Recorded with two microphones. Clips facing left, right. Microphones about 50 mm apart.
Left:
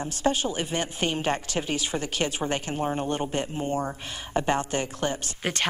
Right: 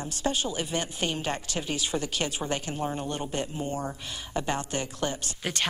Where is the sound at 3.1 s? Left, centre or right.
Left.